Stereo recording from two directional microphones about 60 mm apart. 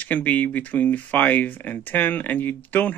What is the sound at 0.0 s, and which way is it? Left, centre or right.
Speech, left.